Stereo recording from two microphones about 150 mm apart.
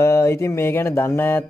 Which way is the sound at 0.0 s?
20° left (ahead or behind).